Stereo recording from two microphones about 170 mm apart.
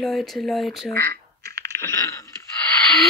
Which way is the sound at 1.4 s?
70° right (ahead or behind).